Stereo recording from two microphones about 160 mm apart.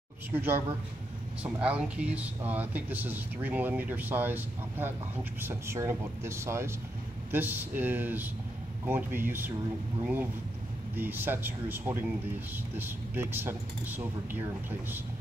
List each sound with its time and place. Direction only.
0.3 s speech: 15° right (ahead or behind)
11.0 s speech: 10° right (ahead or behind)